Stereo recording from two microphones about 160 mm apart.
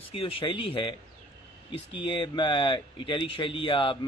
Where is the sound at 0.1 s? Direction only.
35° left (ahead or behind).